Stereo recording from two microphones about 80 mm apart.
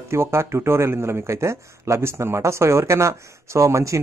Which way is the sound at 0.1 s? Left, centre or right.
Right.